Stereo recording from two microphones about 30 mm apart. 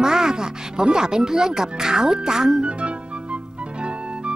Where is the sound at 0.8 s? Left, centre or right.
Right.